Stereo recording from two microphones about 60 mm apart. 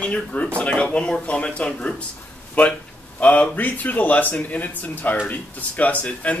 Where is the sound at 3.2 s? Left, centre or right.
Left.